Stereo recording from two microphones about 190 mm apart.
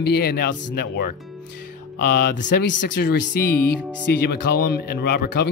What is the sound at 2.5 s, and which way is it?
Speech, 70° left (ahead or behind).